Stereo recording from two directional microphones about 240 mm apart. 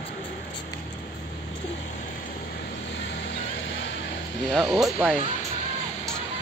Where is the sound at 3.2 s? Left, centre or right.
Left.